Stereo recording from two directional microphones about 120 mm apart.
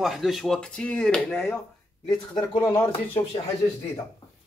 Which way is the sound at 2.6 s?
20° left (ahead or behind).